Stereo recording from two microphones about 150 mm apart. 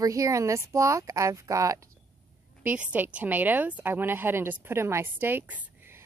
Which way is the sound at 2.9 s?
10° right (ahead or behind).